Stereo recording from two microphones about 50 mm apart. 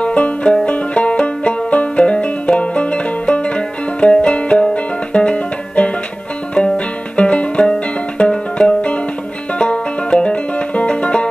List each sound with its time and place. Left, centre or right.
0.0 s music: left